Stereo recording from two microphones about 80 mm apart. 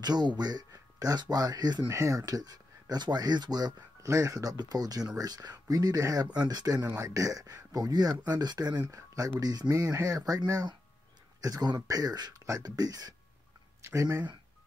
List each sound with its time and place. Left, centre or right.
0.0 s speech: right
1.9 s speech: right
4.0 s speech: right
8.9 s speech: right